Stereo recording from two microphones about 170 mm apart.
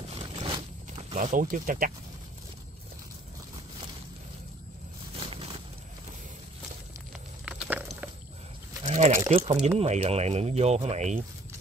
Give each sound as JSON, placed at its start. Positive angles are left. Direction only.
{"t": 1.1, "sound": "speech", "side_deg": -50}
{"t": 7.4, "sound": "a sound", "side_deg": -5}
{"t": 8.8, "sound": "crumpling", "side_deg": -40}
{"t": 9.3, "sound": "speech", "side_deg": -35}